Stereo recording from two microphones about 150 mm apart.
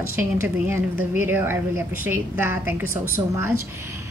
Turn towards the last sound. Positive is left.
turn(degrees=-15)  # may be behind; listen again after turning